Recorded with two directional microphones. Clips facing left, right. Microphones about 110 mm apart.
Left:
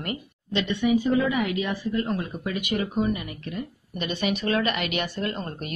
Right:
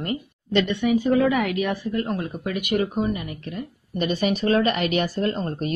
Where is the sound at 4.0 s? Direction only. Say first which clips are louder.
Right 5 dB; 40° right (ahead or behind).